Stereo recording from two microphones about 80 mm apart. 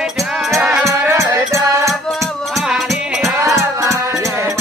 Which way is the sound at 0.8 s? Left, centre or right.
Right.